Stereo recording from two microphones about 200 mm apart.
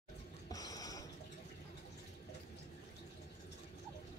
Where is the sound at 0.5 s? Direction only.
20° left (ahead or behind).